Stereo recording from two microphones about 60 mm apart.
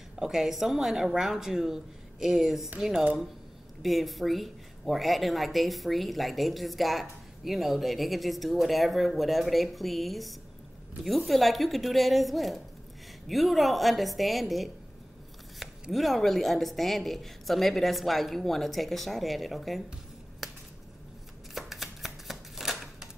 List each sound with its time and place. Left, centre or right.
0.2 s a woman's voice: centre
15.9 s speech: centre
20.4 s a sound: centre
21.5 s shuffling cards: centre